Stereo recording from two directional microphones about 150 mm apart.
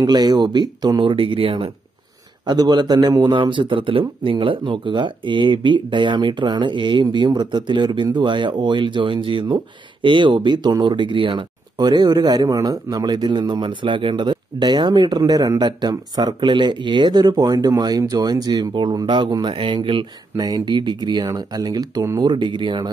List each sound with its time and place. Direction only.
0.0 s a man's voice: 25° right (ahead or behind)